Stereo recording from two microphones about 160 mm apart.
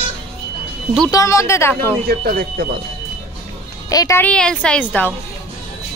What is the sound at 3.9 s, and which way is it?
Speech, 25° left (ahead or behind).